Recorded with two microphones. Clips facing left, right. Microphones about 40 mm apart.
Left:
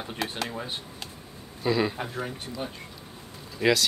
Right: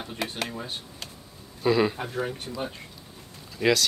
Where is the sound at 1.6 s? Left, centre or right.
Centre.